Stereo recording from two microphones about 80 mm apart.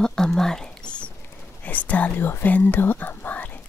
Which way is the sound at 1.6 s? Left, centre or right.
Left.